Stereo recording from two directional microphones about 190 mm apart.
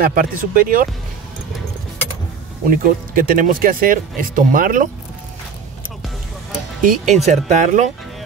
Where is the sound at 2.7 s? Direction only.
50° right (ahead or behind).